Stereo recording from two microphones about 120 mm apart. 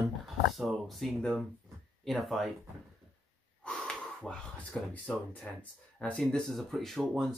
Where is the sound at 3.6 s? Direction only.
10° left (ahead or behind).